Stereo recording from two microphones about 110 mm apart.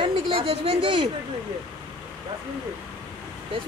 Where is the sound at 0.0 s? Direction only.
60° right (ahead or behind).